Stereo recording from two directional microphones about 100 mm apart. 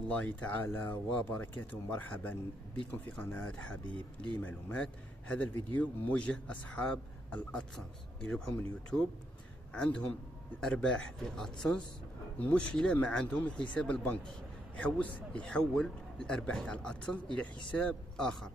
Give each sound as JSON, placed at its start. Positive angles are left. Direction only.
{"t": 0.1, "sound": "speech", "side_deg": 15}
{"t": 9.8, "sound": "speech", "side_deg": 10}